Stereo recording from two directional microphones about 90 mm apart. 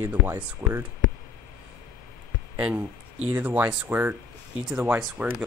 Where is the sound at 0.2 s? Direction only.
15° left (ahead or behind).